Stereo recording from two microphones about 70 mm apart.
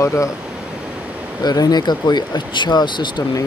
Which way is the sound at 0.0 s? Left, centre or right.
Left.